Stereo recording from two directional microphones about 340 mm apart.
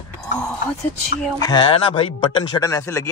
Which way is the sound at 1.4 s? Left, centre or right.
Centre.